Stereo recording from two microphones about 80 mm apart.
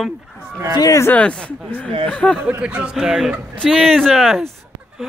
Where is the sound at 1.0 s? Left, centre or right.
Centre.